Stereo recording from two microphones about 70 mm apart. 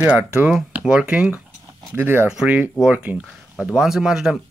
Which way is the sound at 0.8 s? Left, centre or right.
Centre.